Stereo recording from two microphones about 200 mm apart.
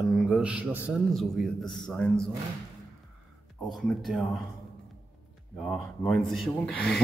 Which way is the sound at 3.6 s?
Centre (ahead or behind).